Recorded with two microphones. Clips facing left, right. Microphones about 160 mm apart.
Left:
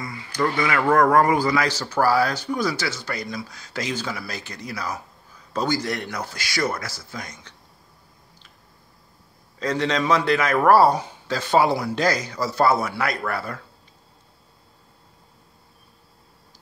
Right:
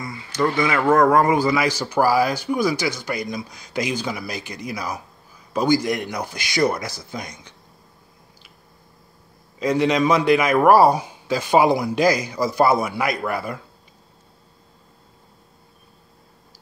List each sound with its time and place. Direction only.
0.0 s a sound: 25° right (ahead or behind)
0.9 s speech: 20° right (ahead or behind)
9.6 s speech: 10° right (ahead or behind)